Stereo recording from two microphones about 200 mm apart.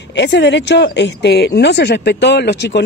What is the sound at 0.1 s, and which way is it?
Speech, 60° left (ahead or behind).